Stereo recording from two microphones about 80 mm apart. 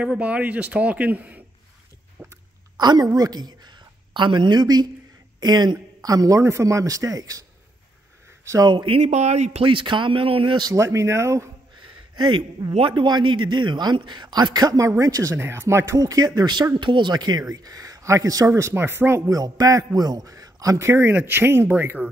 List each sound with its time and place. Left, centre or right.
0.0 s speech: centre
2.2 s a sound: centre
2.8 s a woman's voice: right
5.9 s a man's voice: right
8.6 s a man's voice: right
10.7 s speech: right
11.8 s a man's voice: right
16.0 s a man's voice: right
16.3 s a man's voice: right
16.8 s a man's voice: right
18.5 s a man's voice: right
20.8 s speech: right